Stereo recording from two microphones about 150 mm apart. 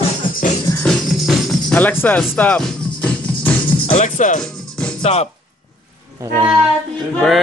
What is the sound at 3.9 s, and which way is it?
Music, 55° left (ahead or behind).